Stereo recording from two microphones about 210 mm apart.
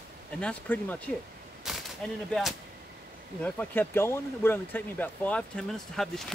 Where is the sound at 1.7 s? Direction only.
Centre (ahead or behind).